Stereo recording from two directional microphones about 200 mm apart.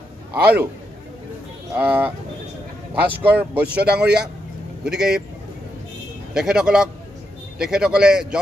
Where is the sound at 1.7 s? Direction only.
10° right (ahead or behind).